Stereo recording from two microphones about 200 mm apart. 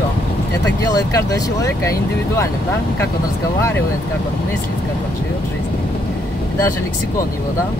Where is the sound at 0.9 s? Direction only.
20° left (ahead or behind).